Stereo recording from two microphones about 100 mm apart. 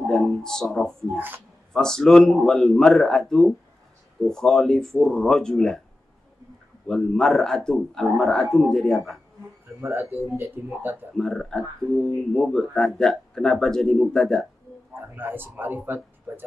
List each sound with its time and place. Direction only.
0.0 s a sound: centre (ahead or behind)
1.1 s speech: 20° right (ahead or behind)
1.7 s speech: 5° left (ahead or behind)
6.9 s speech: 5° left (ahead or behind)
9.8 s speech: 25° right (ahead or behind)
11.1 s speech: 5° left (ahead or behind)
15.0 s speech: 20° right (ahead or behind)